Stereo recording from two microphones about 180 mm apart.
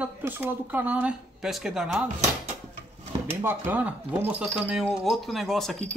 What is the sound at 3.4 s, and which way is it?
Speech, 10° right (ahead or behind).